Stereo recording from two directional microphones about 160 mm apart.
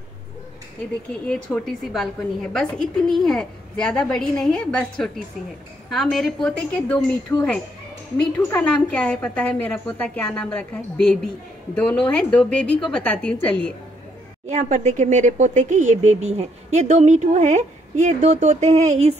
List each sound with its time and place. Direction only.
1.2 s a woman's voice: 5° left (ahead or behind)
11.7 s a woman's voice: 5° left (ahead or behind)
14.5 s speech: 50° right (ahead or behind)